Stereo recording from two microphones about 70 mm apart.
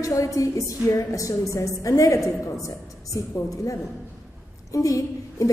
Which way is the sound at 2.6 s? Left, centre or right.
Left.